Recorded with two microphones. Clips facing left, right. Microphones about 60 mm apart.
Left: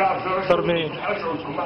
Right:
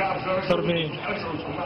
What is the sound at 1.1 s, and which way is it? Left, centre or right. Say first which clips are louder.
Speech: left 4 dB; centre.